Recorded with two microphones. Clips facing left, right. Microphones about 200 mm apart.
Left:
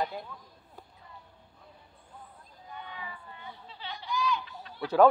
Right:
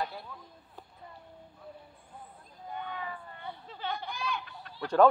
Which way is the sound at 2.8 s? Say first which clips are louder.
Right 4 dB; 50° right (ahead or behind).